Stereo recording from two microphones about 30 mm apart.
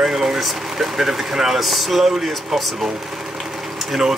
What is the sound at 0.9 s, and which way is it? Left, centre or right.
Speech, centre.